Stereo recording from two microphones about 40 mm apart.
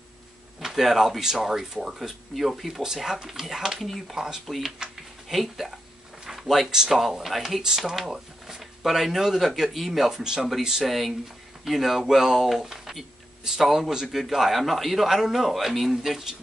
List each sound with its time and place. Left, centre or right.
0.6 s speech: centre
6.2 s a sound: centre
6.7 s speech: centre
7.6 s speech: centre
10.9 s speech: centre